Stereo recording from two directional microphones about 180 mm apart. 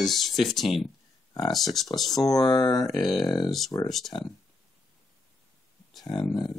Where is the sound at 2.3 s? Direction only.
20° left (ahead or behind).